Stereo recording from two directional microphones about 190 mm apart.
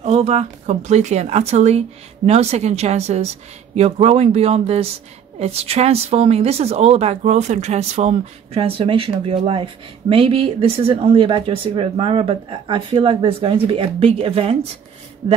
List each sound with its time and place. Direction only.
0.0 s a woman's voice: 35° right (ahead or behind)